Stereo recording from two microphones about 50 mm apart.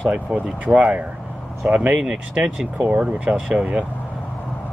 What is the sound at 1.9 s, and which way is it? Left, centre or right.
Speech, centre.